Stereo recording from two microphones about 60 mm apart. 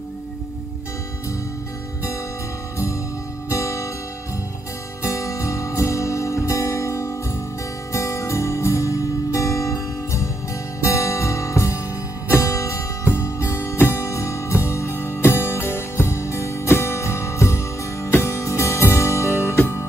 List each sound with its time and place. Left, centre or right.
3.5 s music: left
5.0 s music: left